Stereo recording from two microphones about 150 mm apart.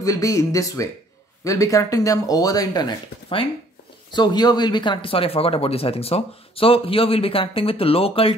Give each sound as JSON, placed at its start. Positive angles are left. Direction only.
{"t": 0.0, "sound": "speech", "side_deg": 20}